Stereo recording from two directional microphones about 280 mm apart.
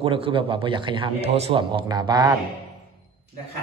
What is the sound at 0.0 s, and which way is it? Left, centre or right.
Speech, centre.